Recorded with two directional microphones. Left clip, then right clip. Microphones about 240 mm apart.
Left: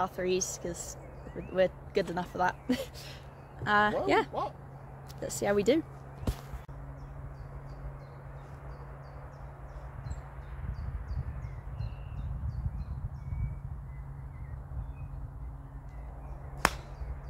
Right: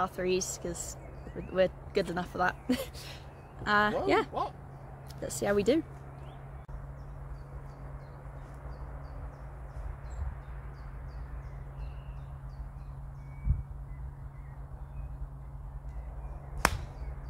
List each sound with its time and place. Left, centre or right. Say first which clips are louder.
0.0 s speech: even; centre
4.3 s speech: even; right
5.2 s speech: even; centre